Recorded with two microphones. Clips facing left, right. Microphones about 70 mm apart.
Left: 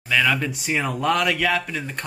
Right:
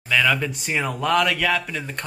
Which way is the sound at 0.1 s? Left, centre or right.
Centre.